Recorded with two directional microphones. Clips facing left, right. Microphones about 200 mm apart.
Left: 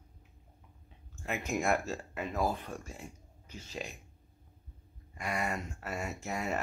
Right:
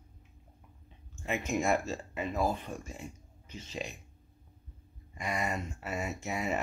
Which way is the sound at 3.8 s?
Centre (ahead or behind).